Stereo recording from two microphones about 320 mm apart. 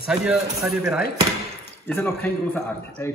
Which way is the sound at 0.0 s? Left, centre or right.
Centre.